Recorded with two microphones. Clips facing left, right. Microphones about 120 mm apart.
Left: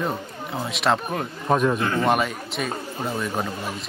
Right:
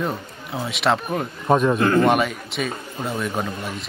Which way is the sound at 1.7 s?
50° right (ahead or behind).